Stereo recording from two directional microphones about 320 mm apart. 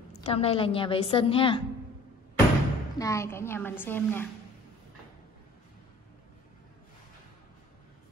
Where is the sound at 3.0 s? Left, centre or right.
Centre.